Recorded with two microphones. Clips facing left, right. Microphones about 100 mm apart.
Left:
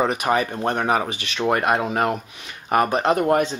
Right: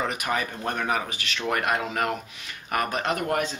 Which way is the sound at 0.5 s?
35° left (ahead or behind).